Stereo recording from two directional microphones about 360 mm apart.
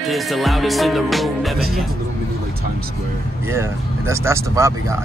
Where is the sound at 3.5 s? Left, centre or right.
Centre.